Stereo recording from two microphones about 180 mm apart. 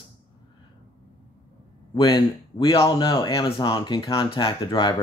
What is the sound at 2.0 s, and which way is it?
Speech, 25° left (ahead or behind).